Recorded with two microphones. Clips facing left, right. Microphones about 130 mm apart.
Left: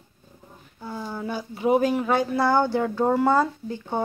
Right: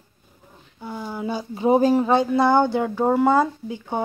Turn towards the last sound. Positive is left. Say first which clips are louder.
# right 1 dB
turn(degrees=-15)  # may be behind; listen again after turning